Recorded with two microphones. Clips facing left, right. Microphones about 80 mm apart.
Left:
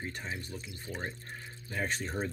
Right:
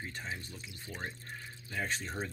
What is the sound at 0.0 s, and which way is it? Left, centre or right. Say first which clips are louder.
Speech: left 2 dB; left.